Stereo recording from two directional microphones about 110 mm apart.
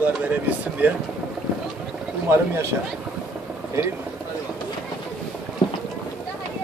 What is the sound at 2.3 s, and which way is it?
Speech, 25° right (ahead or behind).